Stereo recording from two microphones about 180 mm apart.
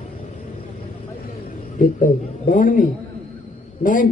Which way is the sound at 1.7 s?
50° left (ahead or behind).